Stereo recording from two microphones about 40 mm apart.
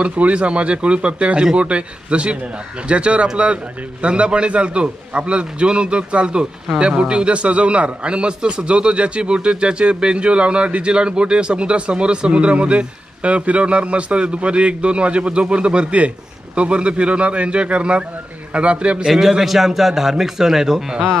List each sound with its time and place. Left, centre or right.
0.0 s a man's voice: right
19.0 s a man's voice: centre